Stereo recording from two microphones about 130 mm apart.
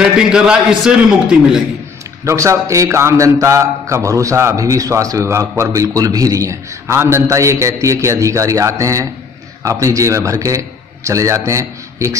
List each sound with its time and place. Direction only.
0.0 s a man's voice: 5° right (ahead or behind)
2.2 s speech: 20° right (ahead or behind)